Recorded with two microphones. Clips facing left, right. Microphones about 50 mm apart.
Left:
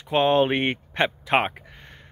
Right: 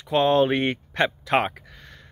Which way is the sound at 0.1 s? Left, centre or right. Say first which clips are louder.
Even; left.